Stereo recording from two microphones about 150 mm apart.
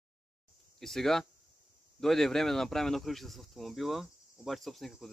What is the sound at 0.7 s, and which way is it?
Speech, centre (ahead or behind).